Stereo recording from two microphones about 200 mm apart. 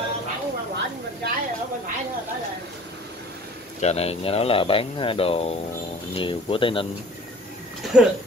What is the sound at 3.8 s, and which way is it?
Speech, 30° left (ahead or behind).